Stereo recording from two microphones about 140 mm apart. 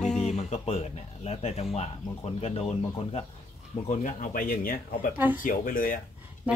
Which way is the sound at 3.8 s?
60° left (ahead or behind).